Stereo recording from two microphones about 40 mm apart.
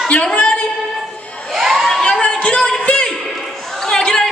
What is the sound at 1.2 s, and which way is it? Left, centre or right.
Crowd, left.